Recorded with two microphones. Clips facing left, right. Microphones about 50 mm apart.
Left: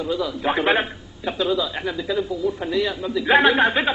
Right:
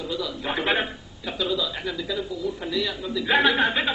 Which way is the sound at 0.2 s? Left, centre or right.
Centre.